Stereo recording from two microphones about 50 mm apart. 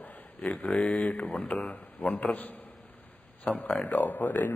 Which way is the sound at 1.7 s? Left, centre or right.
Left.